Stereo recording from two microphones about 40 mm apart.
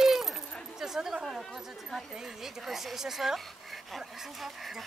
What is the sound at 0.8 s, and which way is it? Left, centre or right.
A woman's voice, centre.